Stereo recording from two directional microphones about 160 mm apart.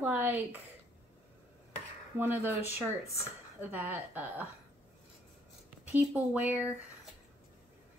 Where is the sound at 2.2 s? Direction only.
15° right (ahead or behind).